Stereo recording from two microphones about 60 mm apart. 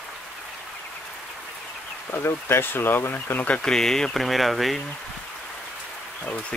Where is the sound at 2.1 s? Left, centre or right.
Left.